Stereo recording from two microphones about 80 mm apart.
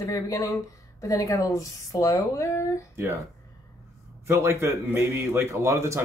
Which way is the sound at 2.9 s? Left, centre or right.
Right.